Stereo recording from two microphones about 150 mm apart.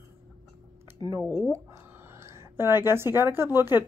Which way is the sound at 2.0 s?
15° right (ahead or behind).